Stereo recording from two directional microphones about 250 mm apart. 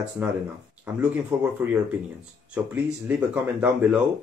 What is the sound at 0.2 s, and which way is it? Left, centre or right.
Speech, centre.